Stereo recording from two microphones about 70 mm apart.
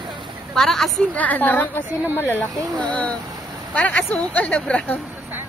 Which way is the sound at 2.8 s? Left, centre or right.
Centre.